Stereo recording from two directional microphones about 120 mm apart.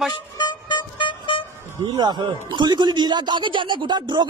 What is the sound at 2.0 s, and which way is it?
Speech, 40° right (ahead or behind).